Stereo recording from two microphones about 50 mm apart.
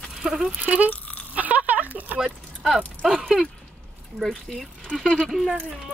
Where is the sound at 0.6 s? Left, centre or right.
Right.